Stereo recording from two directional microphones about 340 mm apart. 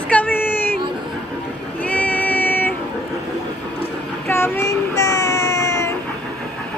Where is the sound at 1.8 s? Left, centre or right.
Centre.